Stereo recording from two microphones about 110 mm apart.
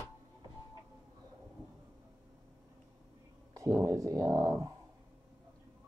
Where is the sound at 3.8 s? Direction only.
30° right (ahead or behind).